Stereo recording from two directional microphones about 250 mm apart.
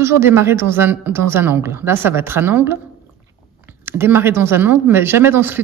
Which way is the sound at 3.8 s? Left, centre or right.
Centre.